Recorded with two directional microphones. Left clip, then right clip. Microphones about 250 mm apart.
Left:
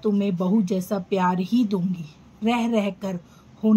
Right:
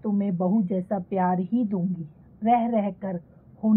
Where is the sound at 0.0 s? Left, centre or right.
Centre.